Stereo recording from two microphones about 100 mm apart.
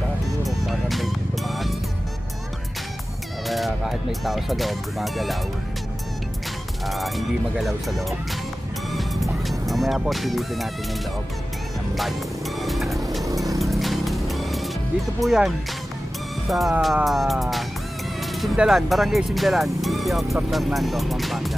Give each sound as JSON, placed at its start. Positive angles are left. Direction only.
{"t": 0.4, "sound": "music", "side_deg": 0}
{"t": 3.4, "sound": "speech", "side_deg": 0}
{"t": 6.9, "sound": "speech", "side_deg": 0}
{"t": 8.9, "sound": "music", "side_deg": 0}
{"t": 12.6, "sound": "vehicle", "side_deg": 0}
{"t": 13.6, "sound": "music", "side_deg": 0}
{"t": 16.4, "sound": "speech", "side_deg": 0}